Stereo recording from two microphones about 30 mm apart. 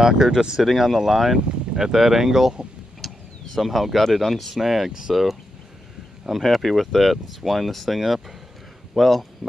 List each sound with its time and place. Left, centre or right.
0.0 s speech: right
0.7 s speech: centre
3.0 s vehicle: centre
3.5 s speech: centre
4.6 s speech: centre
6.4 s speech: centre